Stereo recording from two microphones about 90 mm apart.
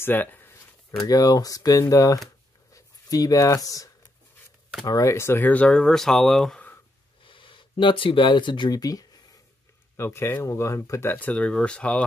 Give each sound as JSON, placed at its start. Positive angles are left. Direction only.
{"t": 0.0, "sound": "a sound", "side_deg": 20}
{"t": 1.0, "sound": "speech", "side_deg": 45}
{"t": 7.2, "sound": "speech", "side_deg": 70}
{"t": 9.9, "sound": "speech", "side_deg": 30}
{"t": 11.1, "sound": "speech", "side_deg": 15}